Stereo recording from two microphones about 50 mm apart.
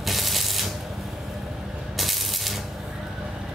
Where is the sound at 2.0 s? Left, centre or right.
Centre.